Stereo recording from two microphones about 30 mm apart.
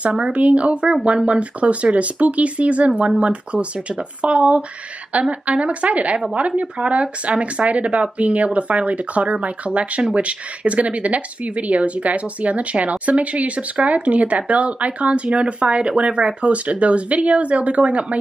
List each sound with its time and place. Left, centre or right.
0.1 s speech: right
5.1 s speech: right